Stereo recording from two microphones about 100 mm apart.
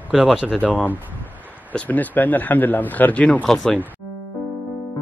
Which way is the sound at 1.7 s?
15° left (ahead or behind).